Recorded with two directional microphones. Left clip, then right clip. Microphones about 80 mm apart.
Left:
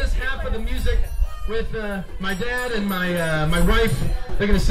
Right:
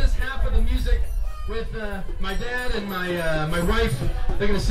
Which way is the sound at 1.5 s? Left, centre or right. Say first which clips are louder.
Left 4 dB; left.